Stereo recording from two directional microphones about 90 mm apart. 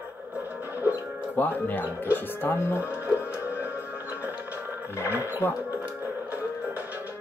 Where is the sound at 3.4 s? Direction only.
20° right (ahead or behind).